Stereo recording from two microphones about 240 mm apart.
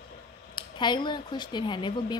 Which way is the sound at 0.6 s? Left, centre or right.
Centre.